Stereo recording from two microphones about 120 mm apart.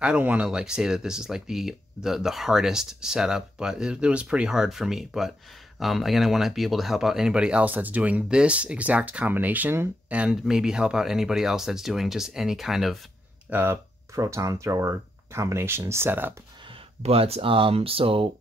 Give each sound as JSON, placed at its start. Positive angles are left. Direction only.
{"t": 0.0, "sound": "speech", "side_deg": -10}
{"t": 13.5, "sound": "speech", "side_deg": -20}
{"t": 17.0, "sound": "speech", "side_deg": -55}